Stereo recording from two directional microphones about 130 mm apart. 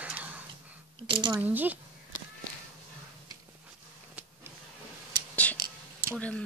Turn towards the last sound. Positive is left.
turn(degrees=10)  # may be behind; listen again after turning